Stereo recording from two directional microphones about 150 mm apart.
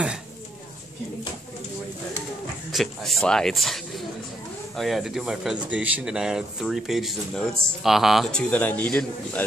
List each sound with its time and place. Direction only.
2.7 s a man's voice: centre (ahead or behind)